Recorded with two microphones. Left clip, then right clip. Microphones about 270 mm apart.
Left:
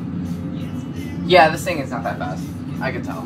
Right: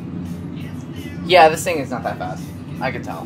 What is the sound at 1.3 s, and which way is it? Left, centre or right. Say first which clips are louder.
Speech: right 2 dB; right.